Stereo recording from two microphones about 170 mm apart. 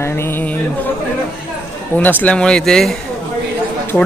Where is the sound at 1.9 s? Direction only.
15° right (ahead or behind).